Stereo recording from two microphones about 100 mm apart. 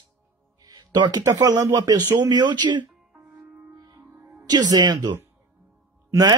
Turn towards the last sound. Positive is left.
turn(degrees=-40)  # may be behind; listen again after turning